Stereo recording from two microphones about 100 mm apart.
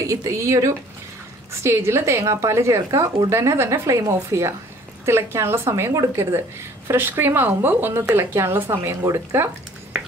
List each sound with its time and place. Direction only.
0.0 s a woman's voice: 35° right (ahead or behind)